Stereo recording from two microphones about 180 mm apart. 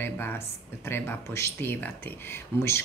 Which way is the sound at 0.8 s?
10° left (ahead or behind).